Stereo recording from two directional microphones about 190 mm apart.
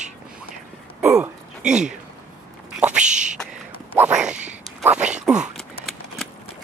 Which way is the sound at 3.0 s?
40° right (ahead or behind).